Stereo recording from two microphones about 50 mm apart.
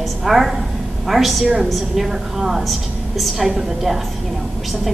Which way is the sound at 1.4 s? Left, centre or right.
Centre.